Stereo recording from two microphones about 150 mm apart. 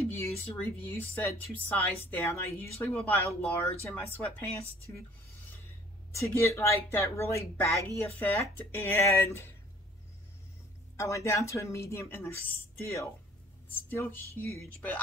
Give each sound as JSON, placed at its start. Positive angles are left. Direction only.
{"t": 0.1, "sound": "speech", "side_deg": 15}
{"t": 6.1, "sound": "speech", "side_deg": 20}
{"t": 11.0, "sound": "speech", "side_deg": 20}